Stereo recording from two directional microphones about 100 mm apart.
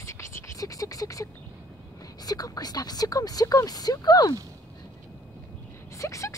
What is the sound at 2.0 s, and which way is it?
Speech, 40° left (ahead or behind).